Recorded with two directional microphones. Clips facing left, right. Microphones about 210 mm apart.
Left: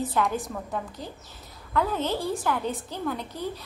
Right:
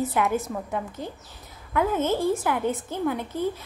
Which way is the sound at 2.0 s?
45° right (ahead or behind).